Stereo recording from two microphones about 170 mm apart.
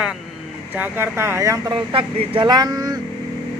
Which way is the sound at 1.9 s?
30° right (ahead or behind).